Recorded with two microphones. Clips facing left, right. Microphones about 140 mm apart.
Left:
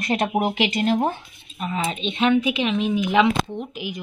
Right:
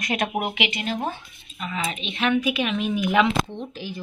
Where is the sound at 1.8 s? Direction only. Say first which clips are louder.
Left 4 dB; 25° left (ahead or behind).